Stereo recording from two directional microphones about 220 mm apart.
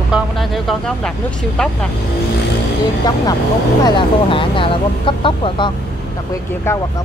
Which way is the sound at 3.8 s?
20° left (ahead or behind).